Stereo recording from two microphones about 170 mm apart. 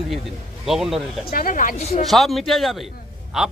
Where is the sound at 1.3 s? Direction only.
55° left (ahead or behind).